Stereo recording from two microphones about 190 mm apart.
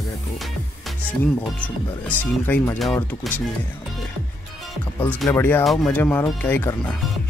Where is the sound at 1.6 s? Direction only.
10° left (ahead or behind).